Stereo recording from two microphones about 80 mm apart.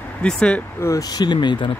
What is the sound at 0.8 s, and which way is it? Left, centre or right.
Speech, left.